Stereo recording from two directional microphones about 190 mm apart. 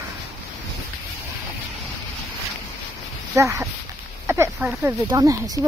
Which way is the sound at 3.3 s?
15° right (ahead or behind).